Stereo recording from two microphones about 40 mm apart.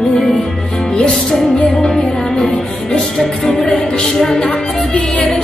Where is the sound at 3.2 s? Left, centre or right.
Centre.